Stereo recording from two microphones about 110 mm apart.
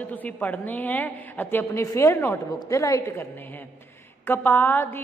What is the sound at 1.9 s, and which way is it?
A woman's voice, 25° left (ahead or behind).